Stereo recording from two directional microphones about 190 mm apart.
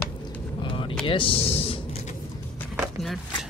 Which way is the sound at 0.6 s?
25° left (ahead or behind).